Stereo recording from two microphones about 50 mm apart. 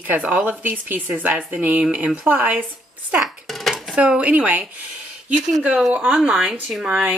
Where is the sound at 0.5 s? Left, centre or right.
Right.